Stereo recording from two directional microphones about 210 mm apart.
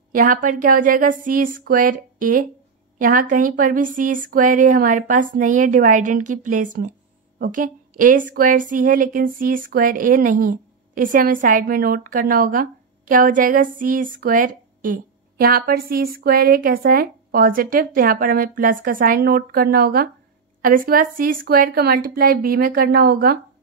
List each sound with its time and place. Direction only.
0.1 s a woman's voice: 40° right (ahead or behind)